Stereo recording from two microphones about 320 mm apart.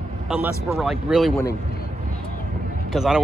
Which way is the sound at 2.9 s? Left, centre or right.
Centre.